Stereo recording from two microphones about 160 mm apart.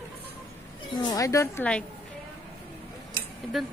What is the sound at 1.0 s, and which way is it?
Speech, 20° left (ahead or behind).